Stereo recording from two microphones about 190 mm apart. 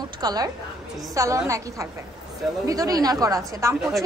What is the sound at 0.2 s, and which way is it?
A woman's voice, 20° right (ahead or behind).